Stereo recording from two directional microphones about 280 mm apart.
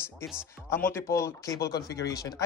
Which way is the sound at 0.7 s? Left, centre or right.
Centre.